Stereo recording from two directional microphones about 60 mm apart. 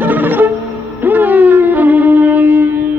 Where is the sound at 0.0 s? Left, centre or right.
Right.